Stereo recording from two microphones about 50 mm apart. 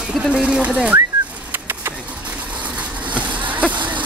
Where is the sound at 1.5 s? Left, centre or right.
Right.